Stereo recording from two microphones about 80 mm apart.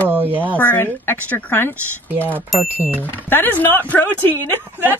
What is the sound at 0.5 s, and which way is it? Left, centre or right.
Speech, left.